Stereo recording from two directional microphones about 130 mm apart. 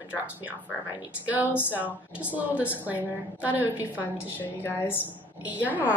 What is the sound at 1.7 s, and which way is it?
A woman's voice, 15° right (ahead or behind).